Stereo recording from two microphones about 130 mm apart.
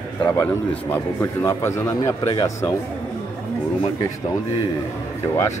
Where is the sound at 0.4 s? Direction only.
15° left (ahead or behind).